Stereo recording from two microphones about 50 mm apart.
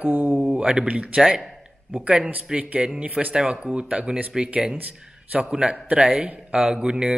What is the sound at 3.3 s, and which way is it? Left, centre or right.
Speech, centre.